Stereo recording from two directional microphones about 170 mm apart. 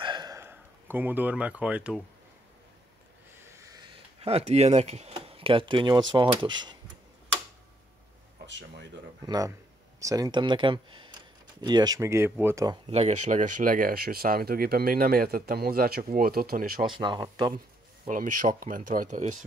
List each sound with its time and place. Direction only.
0.0 s a sound: 25° right (ahead or behind); by 2.0 s 5° right (ahead or behind)
3.5 s a sound: 20° right (ahead or behind)
6.1 s speech: 25° right (ahead or behind)
8.5 s speech: 90° right
9.2 s speech: 25° right (ahead or behind)
12.8 s speech: 35° right (ahead or behind); by 16.8 s 60° right (ahead or behind)
16.8 s speech: 25° right (ahead or behind)
18.0 s speech: 50° right (ahead or behind)